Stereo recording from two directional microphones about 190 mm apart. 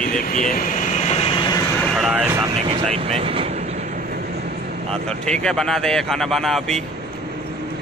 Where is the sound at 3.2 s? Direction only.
30° right (ahead or behind).